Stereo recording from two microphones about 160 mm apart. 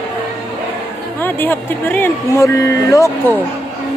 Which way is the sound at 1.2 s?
10° left (ahead or behind).